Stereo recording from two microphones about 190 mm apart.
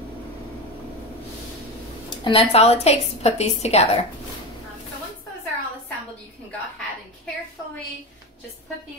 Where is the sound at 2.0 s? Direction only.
25° left (ahead or behind).